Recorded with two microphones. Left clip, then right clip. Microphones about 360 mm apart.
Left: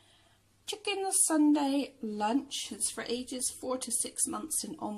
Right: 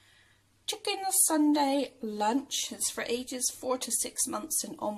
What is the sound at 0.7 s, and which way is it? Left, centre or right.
A woman's voice, centre.